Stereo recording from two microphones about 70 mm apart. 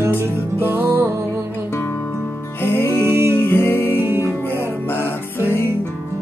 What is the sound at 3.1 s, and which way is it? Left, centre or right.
Music, right.